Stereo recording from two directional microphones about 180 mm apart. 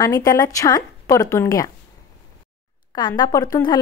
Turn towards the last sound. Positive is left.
turn(degrees=20)  # may be behind; listen again after turning